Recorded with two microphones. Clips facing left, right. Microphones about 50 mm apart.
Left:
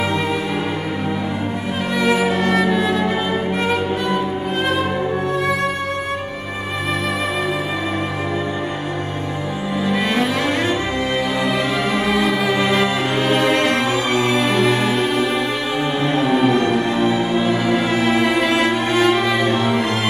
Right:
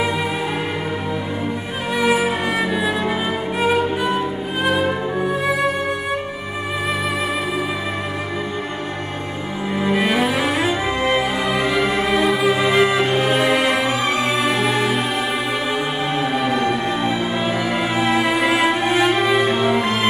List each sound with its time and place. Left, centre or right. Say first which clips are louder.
2.0 s music: even; centre
9.8 s cello: right 1 dB; centre
11.1 s music: right 1 dB; right
11.8 s music: even; centre
16.2 s music: left 5 dB; centre
17.1 s music: left 3 dB; right
17.6 s music: left 2 dB; centre